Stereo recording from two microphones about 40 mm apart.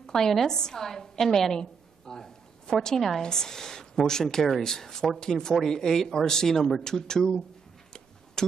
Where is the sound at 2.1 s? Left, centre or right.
Centre.